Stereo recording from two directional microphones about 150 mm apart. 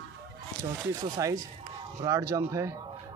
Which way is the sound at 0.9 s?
20° right (ahead or behind).